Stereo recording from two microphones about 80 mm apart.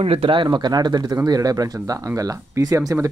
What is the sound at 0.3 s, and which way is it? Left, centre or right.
Speech, right.